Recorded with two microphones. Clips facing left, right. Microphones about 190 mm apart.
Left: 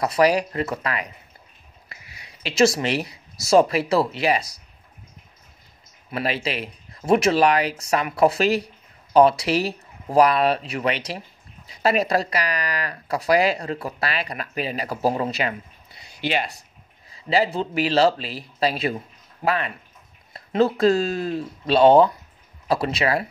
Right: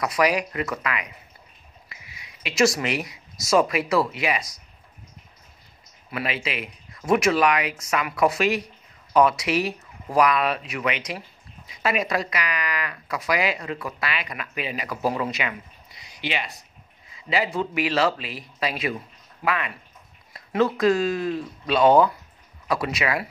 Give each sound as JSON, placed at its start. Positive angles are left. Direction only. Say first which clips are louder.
{"t": 0.0, "sound": "speech", "louder": "left 3 dB", "side_deg": 30}
{"t": 6.1, "sound": "speech", "louder": "left 3 dB", "side_deg": 35}
{"t": 17.1, "sound": "speech", "louder": "left 4 dB", "side_deg": 35}